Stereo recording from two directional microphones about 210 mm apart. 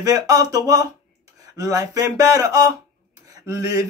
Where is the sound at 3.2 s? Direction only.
15° right (ahead or behind).